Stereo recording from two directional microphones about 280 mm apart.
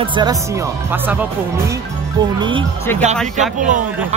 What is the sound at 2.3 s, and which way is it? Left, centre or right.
Speech, centre.